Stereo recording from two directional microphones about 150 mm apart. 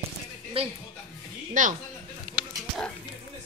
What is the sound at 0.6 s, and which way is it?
Music, 40° right (ahead or behind).